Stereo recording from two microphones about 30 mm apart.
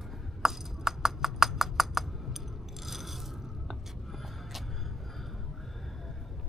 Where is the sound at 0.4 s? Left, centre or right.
Centre.